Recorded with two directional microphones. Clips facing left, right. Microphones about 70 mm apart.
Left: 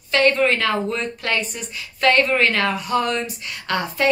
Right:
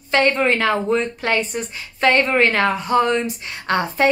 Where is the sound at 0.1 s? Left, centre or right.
Right.